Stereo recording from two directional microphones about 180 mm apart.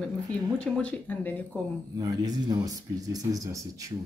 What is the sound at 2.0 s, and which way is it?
Speech, 20° right (ahead or behind).